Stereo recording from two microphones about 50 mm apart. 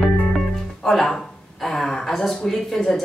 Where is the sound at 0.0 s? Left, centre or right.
Centre.